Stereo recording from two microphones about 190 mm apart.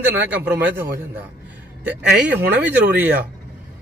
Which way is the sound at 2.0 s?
60° right (ahead or behind).